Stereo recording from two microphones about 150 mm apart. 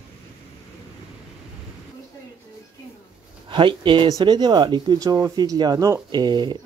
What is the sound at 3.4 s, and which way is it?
Speech, 35° right (ahead or behind).